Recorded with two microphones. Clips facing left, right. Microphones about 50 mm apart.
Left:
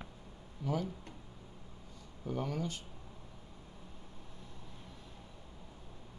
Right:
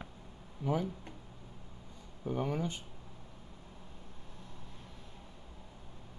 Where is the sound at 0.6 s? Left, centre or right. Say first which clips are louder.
Right 3 dB; centre.